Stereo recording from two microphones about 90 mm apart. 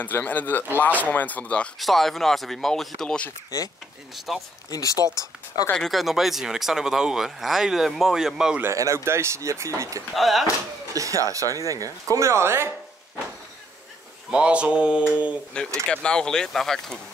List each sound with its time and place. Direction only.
0.0 s speech: 20° left (ahead or behind)
1.8 s speech: centre (ahead or behind)
4.3 s speech: centre (ahead or behind)
4.6 s speech: 40° left (ahead or behind)
5.8 s speech: centre (ahead or behind)
8.7 s speech: 35° right (ahead or behind)
10.1 s speech: centre (ahead or behind)
10.9 s speech: 40° right (ahead or behind)
14.3 s mantra: 15° right (ahead or behind)
15.5 s speech: 10° left (ahead or behind)